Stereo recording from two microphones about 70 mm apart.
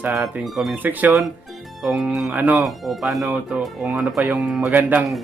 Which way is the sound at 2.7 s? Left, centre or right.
Centre.